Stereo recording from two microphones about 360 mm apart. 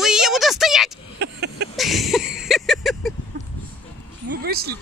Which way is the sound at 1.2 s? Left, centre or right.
Right.